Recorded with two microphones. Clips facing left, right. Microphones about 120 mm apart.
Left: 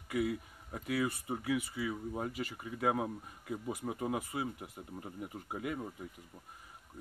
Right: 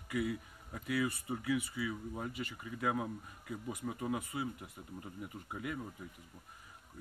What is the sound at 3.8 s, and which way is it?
Speech, 30° left (ahead or behind).